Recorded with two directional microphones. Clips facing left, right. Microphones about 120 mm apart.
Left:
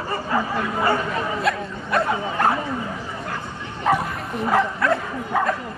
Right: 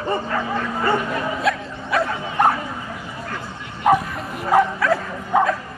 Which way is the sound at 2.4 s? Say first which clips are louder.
Right 3 dB; 20° right (ahead or behind).